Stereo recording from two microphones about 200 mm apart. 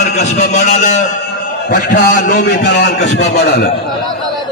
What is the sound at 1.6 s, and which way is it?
A man's voice, 50° left (ahead or behind).